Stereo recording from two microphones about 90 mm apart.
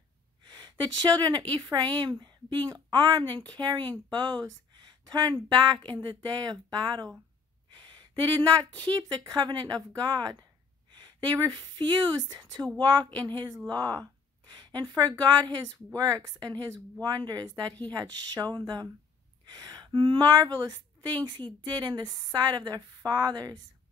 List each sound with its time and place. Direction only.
0.5 s a woman's voice: 55° right (ahead or behind)
8.7 s a woman's voice: 50° right (ahead or behind)
19.4 s gasp: 45° right (ahead or behind)
19.9 s a woman's voice: 60° right (ahead or behind)